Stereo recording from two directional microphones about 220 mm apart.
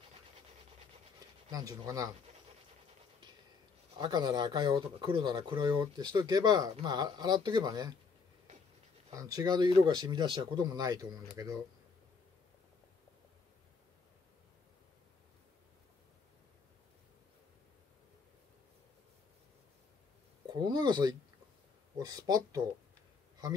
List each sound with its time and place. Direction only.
1.5 s speech: 15° right (ahead or behind)
4.0 s speech: 20° right (ahead or behind)
9.1 s speech: 15° right (ahead or behind)
20.4 s speech: 20° right (ahead or behind)